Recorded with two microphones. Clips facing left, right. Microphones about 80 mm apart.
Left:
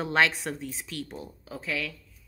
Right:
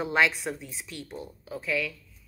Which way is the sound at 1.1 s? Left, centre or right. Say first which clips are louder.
Right 2 dB; centre.